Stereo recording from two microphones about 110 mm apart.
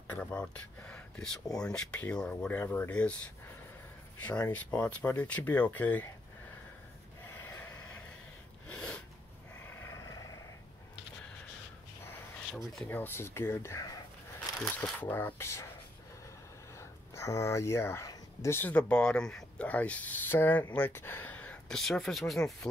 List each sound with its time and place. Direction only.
0.2 s speech: 10° left (ahead or behind)
4.2 s speech: 15° left (ahead or behind)
7.3 s vehicle: 15° left (ahead or behind)
8.6 s snort: 10° left (ahead or behind)
9.8 s vehicle: 30° left (ahead or behind)
12.8 s speech: 20° left (ahead or behind)
16.7 s speech: 25° left (ahead or behind)
21.7 s speech: 5° left (ahead or behind)